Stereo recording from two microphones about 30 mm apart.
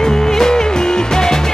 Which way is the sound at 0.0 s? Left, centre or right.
Centre.